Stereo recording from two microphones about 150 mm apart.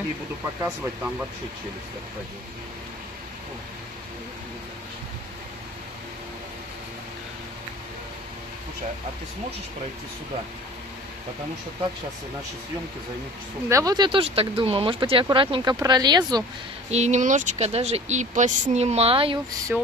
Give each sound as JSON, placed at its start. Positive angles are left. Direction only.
{"t": 0.6, "sound": "speech", "side_deg": -10}
{"t": 13.7, "sound": "speech", "side_deg": -25}
{"t": 16.9, "sound": "speech", "side_deg": -50}
{"t": 19.7, "sound": "speech", "side_deg": -10}